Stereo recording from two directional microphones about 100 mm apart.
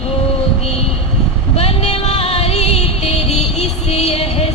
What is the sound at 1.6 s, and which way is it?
Music, 85° left.